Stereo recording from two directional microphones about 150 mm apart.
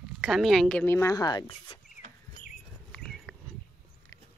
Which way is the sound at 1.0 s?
20° left (ahead or behind).